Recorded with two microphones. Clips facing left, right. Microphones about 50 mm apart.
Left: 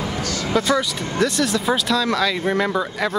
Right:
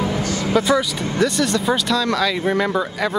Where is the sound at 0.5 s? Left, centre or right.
Centre.